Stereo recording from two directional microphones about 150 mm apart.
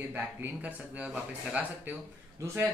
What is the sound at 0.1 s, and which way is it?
Speech, 10° right (ahead or behind).